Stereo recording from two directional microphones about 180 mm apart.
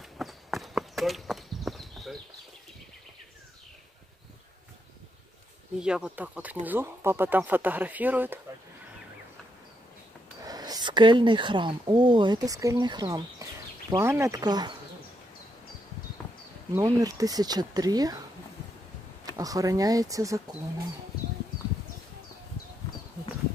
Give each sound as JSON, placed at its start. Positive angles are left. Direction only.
{"t": 0.2, "sound": "walk", "side_deg": 0}
{"t": 5.8, "sound": "speech", "side_deg": -5}
{"t": 10.4, "sound": "speech", "side_deg": -20}
{"t": 16.7, "sound": "speech", "side_deg": -20}
{"t": 19.2, "sound": "speech", "side_deg": -20}